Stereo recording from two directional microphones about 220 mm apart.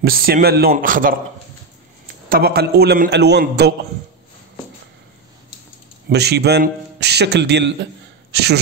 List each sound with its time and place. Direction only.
0.0 s a man's voice: 45° right (ahead or behind)
2.2 s a man's voice: 45° right (ahead or behind)
6.0 s a man's voice: 50° right (ahead or behind)